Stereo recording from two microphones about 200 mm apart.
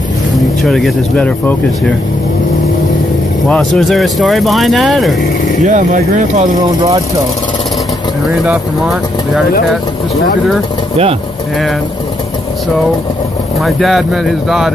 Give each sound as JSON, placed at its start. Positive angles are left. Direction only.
{"t": 0.7, "sound": "speech", "side_deg": 0}
{"t": 3.4, "sound": "speech", "side_deg": 5}
{"t": 5.7, "sound": "speech", "side_deg": -40}
{"t": 8.5, "sound": "speech", "side_deg": 0}
{"t": 13.6, "sound": "speech", "side_deg": 0}